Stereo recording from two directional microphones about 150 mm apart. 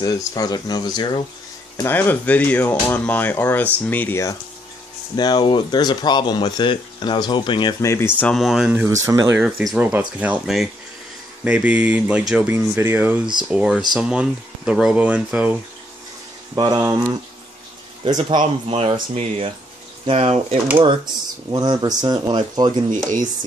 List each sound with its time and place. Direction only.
0.0 s speech: 25° left (ahead or behind)
1.8 s speech: 15° left (ahead or behind); by 7.7 s 30° left (ahead or behind)
7.8 s speech: 20° left (ahead or behind)
8.3 s speech: centre (ahead or behind)
8.8 s speech: 20° right (ahead or behind)
9.4 s speech: 5° right (ahead or behind)
16.5 s speech: 30° right (ahead or behind)
16.8 s speech: 15° right (ahead or behind)
18.0 s speech: 30° right (ahead or behind)
18.4 s speech: 45° right (ahead or behind)